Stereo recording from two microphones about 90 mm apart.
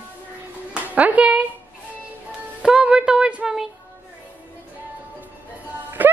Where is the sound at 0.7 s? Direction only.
15° right (ahead or behind).